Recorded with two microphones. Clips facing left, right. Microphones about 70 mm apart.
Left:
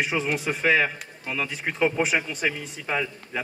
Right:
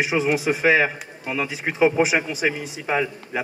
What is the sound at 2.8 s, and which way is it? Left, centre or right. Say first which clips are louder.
Speech: right 6 dB; centre.